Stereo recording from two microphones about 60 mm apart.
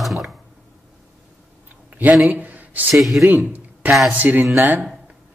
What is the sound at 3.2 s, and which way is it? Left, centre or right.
A man's voice, right.